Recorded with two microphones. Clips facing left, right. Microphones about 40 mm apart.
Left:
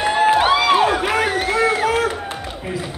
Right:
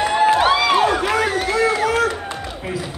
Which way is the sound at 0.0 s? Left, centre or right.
Centre.